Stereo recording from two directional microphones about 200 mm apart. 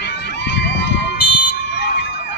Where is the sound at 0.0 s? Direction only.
60° left (ahead or behind).